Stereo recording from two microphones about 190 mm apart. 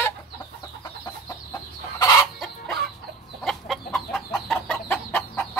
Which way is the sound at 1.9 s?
20° left (ahead or behind).